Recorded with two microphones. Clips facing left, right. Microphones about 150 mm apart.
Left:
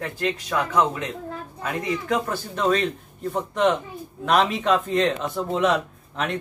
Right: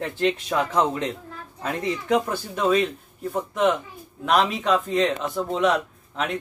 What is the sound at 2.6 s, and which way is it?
Speech, 10° right (ahead or behind).